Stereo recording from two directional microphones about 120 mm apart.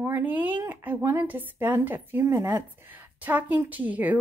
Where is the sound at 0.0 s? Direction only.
15° right (ahead or behind).